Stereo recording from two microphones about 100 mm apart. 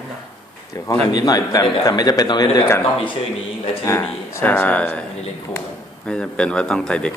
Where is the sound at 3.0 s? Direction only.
65° left (ahead or behind).